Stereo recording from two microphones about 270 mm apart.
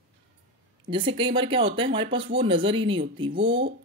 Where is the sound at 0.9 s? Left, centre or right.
Centre.